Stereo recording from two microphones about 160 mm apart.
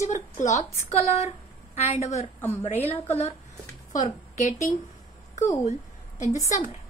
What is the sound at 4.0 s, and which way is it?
Speech, 50° left (ahead or behind).